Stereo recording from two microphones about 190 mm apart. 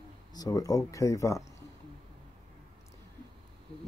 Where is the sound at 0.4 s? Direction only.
20° left (ahead or behind).